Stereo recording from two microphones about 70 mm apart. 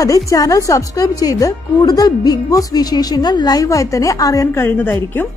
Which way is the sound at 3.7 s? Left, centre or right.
Left.